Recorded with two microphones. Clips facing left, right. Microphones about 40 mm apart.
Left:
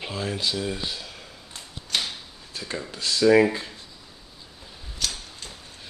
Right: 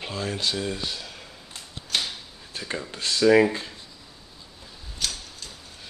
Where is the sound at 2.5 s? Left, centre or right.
Centre.